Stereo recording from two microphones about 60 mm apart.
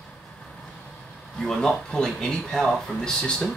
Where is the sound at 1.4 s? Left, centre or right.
Centre.